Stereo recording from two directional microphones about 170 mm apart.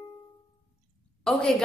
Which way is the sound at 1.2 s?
5° left (ahead or behind).